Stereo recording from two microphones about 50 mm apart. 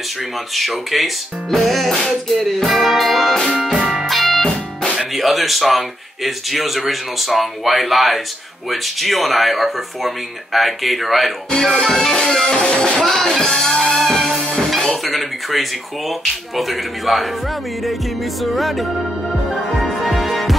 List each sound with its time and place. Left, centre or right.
0.6 s speech: centre
3.5 s music: centre
4.9 s speech: centre
11.8 s music: centre
13.0 s music: centre
15.0 s a sound: centre
16.5 s speech: centre
18.4 s speech: centre
19.8 s music: centre